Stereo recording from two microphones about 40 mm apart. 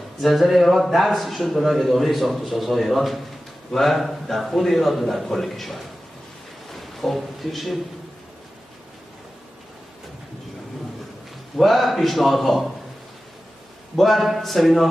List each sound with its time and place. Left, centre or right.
0.2 s a man's voice: centre
6.7 s a sound: centre
11.5 s a man's voice: centre
13.9 s a man's voice: centre